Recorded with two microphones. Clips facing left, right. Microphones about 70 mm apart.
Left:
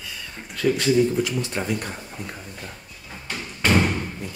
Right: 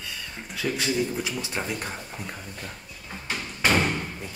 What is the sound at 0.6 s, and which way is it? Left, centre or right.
Speech, centre.